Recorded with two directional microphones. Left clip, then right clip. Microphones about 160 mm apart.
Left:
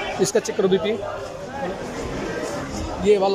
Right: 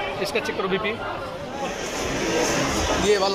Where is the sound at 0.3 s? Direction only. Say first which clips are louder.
Left 6 dB; 40° left (ahead or behind).